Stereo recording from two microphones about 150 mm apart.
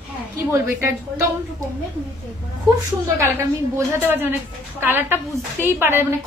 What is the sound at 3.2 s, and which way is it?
A woman's voice, 15° right (ahead or behind).